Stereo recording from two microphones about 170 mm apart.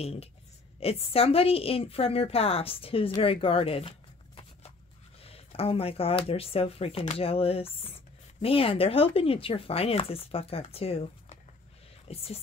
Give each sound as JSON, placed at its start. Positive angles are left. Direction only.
{"t": 0.0, "sound": "speech", "side_deg": 35}
{"t": 5.2, "sound": "speech", "side_deg": 35}